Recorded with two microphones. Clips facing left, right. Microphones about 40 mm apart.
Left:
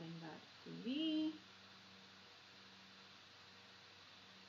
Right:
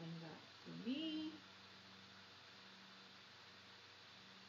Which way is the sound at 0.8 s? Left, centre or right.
Left.